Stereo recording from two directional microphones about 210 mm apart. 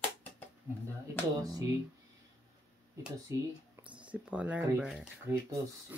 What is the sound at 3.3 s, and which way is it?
Speech, 15° right (ahead or behind).